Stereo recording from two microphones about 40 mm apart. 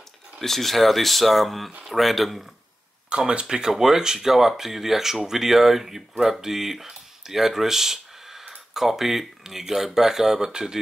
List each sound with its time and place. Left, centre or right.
0.4 s speech: centre
3.2 s speech: right
3.4 s speech: centre